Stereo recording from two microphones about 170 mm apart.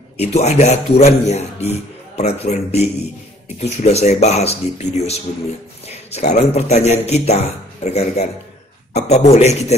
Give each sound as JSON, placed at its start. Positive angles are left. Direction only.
{"t": 0.2, "sound": "a man's voice", "side_deg": 40}
{"t": 6.1, "sound": "a man's voice", "side_deg": 40}